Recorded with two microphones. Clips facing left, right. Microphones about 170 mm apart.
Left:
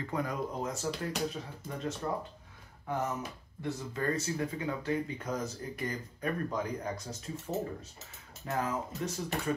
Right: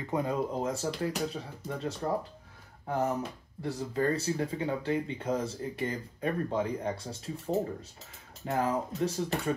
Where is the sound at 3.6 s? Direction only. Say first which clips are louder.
Right 4 dB; 30° right (ahead or behind).